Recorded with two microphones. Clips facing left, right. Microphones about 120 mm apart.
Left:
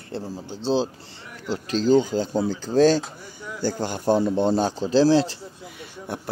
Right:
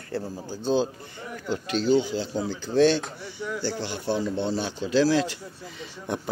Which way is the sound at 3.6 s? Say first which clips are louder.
Left 8 dB; 45° left (ahead or behind).